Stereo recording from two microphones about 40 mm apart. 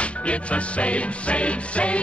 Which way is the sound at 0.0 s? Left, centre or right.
Left.